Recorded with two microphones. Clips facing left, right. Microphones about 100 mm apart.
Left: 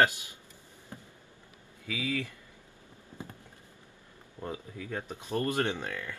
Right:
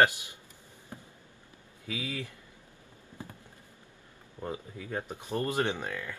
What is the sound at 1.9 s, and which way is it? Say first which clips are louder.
Speech: left 3 dB; 20° right (ahead or behind).